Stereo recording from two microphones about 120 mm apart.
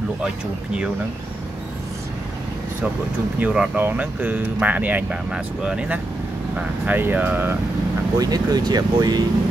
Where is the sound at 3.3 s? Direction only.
10° right (ahead or behind).